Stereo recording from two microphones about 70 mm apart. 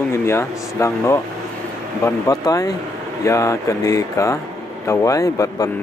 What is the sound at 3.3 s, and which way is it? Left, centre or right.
Speech, left.